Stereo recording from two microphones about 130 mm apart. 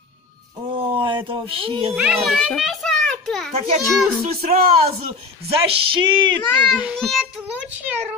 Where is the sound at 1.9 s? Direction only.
5° right (ahead or behind).